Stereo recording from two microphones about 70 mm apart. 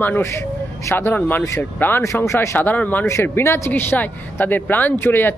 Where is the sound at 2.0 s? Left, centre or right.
Left.